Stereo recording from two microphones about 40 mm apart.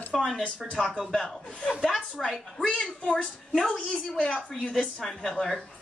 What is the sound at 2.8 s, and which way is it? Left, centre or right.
Speech, left.